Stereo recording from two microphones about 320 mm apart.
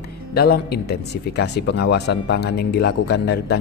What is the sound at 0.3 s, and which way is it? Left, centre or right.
Speech, left.